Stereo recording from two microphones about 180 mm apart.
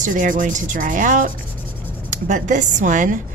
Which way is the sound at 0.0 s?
45° right (ahead or behind).